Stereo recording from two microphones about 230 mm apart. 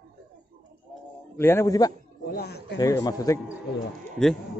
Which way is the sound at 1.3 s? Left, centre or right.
Centre.